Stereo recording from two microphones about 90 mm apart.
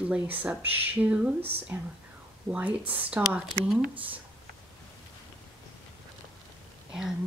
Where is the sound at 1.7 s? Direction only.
30° right (ahead or behind).